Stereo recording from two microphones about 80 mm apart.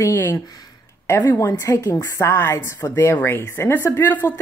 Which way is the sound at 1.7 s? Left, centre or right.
Left.